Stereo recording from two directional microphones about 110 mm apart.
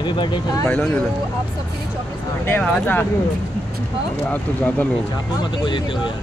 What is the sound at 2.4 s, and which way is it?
Speech, 20° left (ahead or behind).